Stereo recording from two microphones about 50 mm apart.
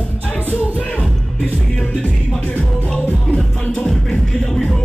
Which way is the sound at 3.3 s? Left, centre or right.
Centre.